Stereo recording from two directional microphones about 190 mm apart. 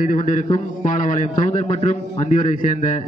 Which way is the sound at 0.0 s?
45° left (ahead or behind).